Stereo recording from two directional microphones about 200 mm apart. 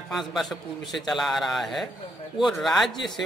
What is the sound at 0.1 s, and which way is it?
A man's voice, centre (ahead or behind).